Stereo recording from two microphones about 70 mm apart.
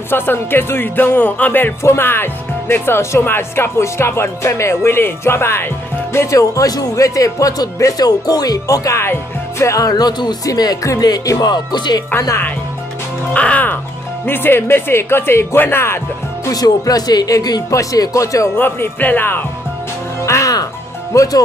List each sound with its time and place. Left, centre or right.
0.1 s speech: left
1.8 s speech: left
6.3 s music: left
9.0 s music: left
11.4 s music: left
13.3 s speech: centre
14.2 s speech: left
16.4 s speech: left
17.6 s music: left
18.6 s speech: left
20.2 s music: left
21.1 s speech: left